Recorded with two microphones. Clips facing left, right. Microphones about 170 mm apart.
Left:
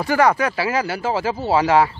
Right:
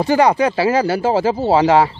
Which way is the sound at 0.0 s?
20° right (ahead or behind).